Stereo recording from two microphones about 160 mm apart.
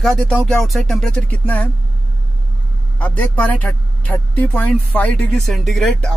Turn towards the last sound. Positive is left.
turn(degrees=0)  # may be behind; listen again after turning